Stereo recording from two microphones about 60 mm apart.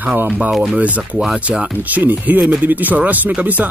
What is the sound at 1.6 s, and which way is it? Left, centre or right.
Speech, right.